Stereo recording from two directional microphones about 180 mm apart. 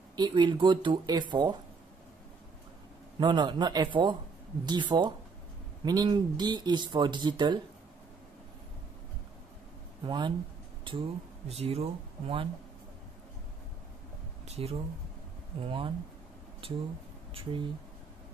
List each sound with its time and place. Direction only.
0.1 s speech: 25° right (ahead or behind)
3.2 s speech: 25° right (ahead or behind)
10.0 s speech: 25° right (ahead or behind)
14.4 s a sound: 35° right (ahead or behind)
15.6 s speech: 30° right (ahead or behind)
17.3 s speech: 30° right (ahead or behind)